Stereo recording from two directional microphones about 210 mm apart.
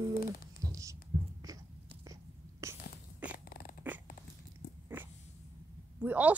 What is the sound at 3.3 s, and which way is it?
Dog, 45° left (ahead or behind).